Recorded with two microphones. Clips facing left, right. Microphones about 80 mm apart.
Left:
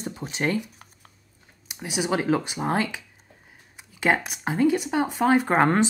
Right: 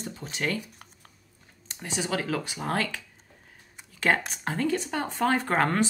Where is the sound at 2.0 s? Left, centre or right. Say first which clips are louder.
Left 7 dB; left.